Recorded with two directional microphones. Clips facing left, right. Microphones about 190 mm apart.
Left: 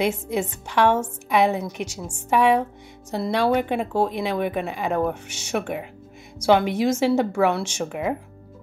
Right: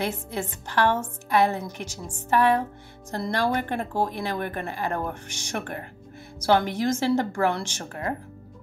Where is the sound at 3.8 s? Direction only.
75° left (ahead or behind).